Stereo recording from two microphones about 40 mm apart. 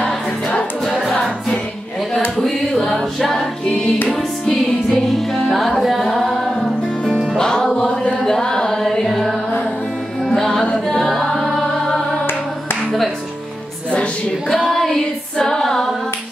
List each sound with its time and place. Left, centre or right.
0.0 s music: left
2.4 s a sound: centre
2.9 s a capella: centre
4.5 s music: centre
7.3 s music: centre
8.2 s a sound: centre
9.0 s music: centre
14.5 s female singing: centre
15.3 s music: centre